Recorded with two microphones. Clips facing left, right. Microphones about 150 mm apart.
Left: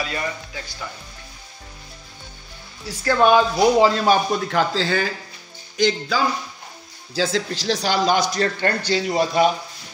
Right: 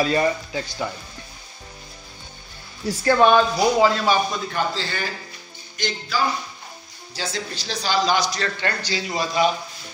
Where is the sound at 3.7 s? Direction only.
35° left (ahead or behind).